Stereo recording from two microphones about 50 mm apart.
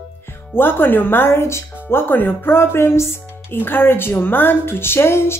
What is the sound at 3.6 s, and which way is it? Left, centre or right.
Speech, left.